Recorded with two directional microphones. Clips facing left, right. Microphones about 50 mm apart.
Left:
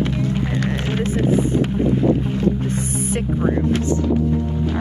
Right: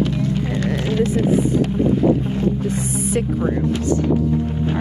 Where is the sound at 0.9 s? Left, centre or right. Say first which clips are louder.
Right 2 dB; left.